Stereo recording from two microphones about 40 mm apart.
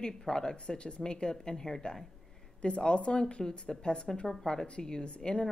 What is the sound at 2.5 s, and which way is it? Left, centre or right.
A woman's voice, left.